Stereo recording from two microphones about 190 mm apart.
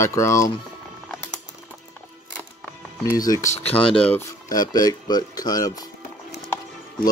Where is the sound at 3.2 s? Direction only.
15° left (ahead or behind).